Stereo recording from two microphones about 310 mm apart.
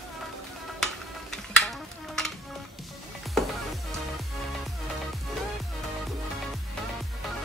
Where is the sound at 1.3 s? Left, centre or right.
Centre.